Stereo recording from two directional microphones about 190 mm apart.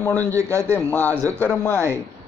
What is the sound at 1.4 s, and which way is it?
Speech, 10° left (ahead or behind).